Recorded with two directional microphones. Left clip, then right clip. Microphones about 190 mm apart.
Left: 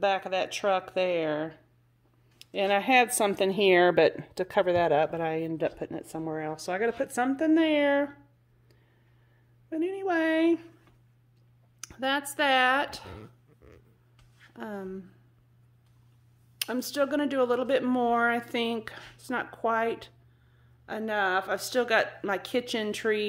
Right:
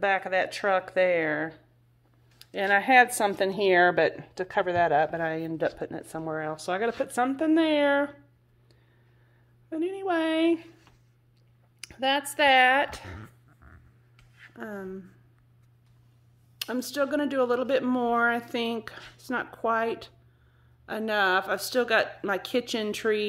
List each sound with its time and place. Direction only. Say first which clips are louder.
0.0 s speech: right 2 dB; 5° left (ahead or behind)
9.7 s speech: even; 15° left (ahead or behind)
11.8 s speech: right 3 dB; 10° left (ahead or behind)
14.5 s speech: even; 5° left (ahead or behind)
16.5 s speech: even; 5° left (ahead or behind)